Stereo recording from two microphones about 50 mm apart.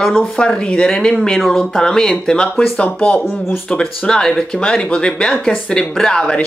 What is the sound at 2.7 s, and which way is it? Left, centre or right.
Speech, left.